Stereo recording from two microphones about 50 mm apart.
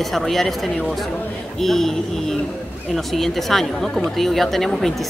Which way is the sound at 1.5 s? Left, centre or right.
Centre.